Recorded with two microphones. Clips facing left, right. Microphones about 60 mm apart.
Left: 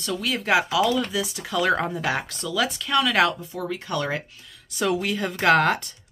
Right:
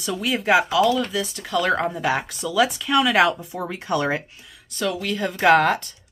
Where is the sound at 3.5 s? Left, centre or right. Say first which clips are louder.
Right 3 dB; right.